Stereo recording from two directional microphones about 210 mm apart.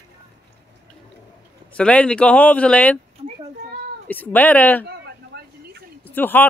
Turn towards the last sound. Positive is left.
turn(degrees=10)  # may be behind; listen again after turning